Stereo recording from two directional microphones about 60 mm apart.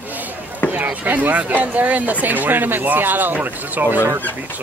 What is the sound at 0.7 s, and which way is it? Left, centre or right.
Speech, right.